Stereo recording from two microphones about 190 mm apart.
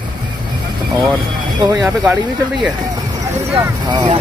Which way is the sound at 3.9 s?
25° right (ahead or behind).